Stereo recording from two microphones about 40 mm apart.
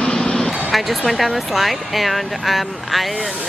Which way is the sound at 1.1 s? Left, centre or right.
Centre.